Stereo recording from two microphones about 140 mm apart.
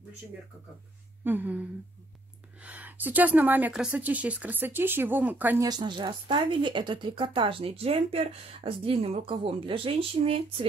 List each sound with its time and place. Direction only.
1.2 s speech: 15° right (ahead or behind)
2.6 s speech: 10° right (ahead or behind)
5.6 s speech: 30° right (ahead or behind)